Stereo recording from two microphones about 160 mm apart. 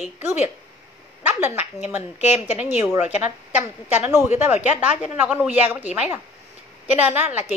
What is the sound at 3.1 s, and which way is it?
A woman's voice, 45° left (ahead or behind).